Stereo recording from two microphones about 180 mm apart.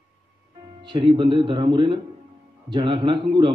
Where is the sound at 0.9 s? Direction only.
25° right (ahead or behind).